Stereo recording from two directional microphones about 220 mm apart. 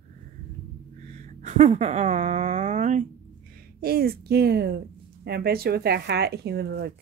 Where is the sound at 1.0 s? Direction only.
30° right (ahead or behind).